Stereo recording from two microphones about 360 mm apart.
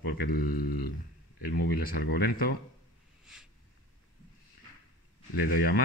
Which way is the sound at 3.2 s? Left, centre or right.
Centre.